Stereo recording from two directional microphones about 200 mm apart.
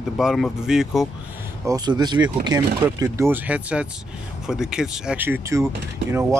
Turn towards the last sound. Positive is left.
turn(degrees=-15)  # may be behind; listen again after turning